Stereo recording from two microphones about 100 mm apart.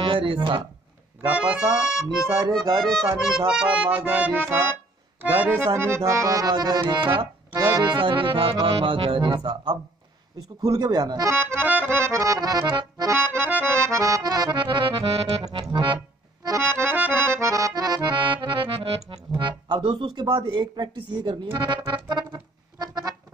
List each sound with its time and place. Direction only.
0.1 s speech: 60° right (ahead or behind)
1.2 s accordion: 15° right (ahead or behind)
5.7 s speech: 25° right (ahead or behind); by 11.2 s 40° right (ahead or behind)
11.2 s accordion: 20° right (ahead or behind)
12.2 s accordion: 35° right (ahead or behind)
13.1 s accordion: 25° right (ahead or behind); by 15.0 s 55° right (ahead or behind)
15.0 s accordion: 90° right
15.7 s music: 55° right (ahead or behind)
16.5 s accordion: 25° right (ahead or behind); by 19.1 s 70° right (ahead or behind)
19.3 s music: 50° right (ahead or behind)
20.2 s speech: 50° right (ahead or behind)